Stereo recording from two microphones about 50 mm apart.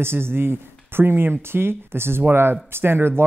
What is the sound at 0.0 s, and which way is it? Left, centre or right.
Speech, right.